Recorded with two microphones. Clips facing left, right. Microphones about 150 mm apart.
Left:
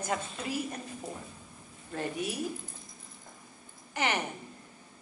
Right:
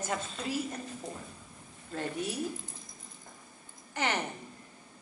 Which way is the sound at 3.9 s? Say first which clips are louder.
Left 1 dB; 10° left (ahead or behind).